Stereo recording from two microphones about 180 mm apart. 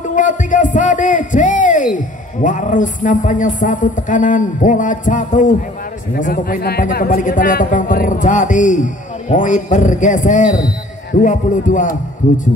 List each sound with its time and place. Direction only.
0.1 s a man's voice: 45° left (ahead or behind)